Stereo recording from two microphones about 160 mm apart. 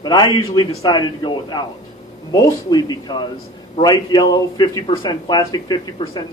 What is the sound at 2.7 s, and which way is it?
A man's voice, 25° left (ahead or behind).